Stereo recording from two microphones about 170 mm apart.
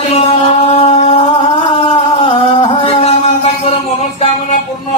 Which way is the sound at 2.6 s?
35° left (ahead or behind).